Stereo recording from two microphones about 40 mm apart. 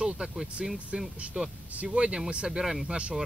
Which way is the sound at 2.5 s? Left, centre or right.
Centre.